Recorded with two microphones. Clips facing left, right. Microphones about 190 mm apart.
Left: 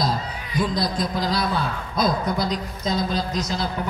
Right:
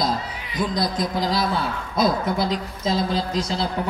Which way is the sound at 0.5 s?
20° right (ahead or behind).